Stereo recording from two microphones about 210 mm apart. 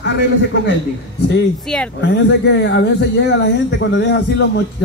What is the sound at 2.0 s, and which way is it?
Speech, 55° left (ahead or behind).